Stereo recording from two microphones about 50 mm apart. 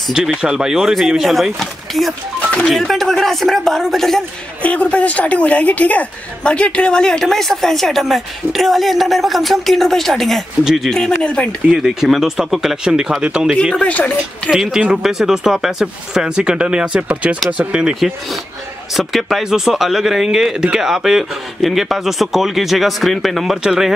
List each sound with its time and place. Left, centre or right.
0.1 s a woman's voice: centre
4.6 s a woman's voice: left; by 10.4 s centre
10.6 s speech: centre
10.9 s speech: centre
11.8 s speech: centre
13.7 s speech: left
15.0 s speech: centre
18.9 s a woman's voice: centre